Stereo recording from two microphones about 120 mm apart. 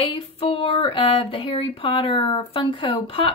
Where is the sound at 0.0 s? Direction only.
50° left (ahead or behind).